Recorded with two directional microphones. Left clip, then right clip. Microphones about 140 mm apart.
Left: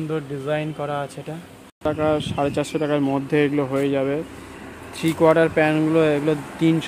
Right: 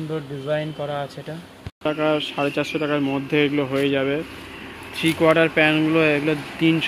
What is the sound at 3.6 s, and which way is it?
Speech, 10° left (ahead or behind).